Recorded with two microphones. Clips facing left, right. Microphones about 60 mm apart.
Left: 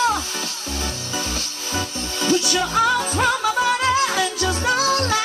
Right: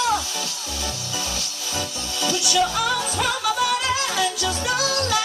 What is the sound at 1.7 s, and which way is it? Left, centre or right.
Music, left.